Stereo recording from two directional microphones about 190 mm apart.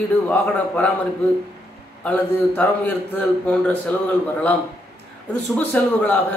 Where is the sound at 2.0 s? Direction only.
10° left (ahead or behind).